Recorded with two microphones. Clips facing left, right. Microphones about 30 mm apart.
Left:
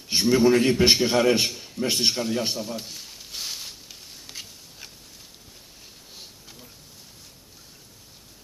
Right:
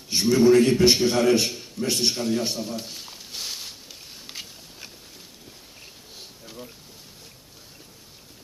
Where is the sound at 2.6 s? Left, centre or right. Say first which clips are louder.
Right 1 dB; centre.